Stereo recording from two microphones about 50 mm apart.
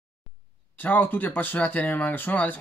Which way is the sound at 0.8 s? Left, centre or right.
Left.